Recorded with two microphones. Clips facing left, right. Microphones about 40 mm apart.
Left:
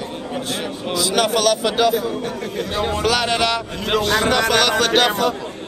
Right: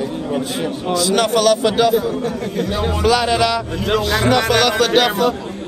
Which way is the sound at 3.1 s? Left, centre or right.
Left.